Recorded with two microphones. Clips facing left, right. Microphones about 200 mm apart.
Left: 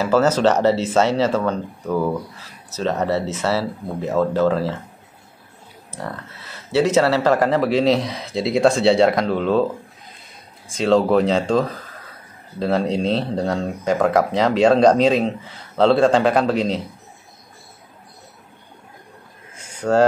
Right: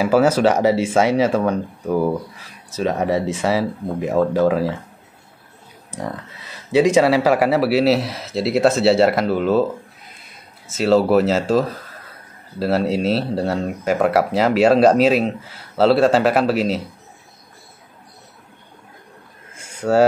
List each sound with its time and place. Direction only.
0.0 s speech: 10° right (ahead or behind)
5.9 s speech: 15° right (ahead or behind)
10.7 s speech: 5° right (ahead or behind)
19.5 s a sound: 10° right (ahead or behind)